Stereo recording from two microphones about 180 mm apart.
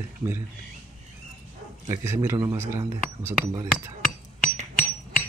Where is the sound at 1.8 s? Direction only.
15° right (ahead or behind).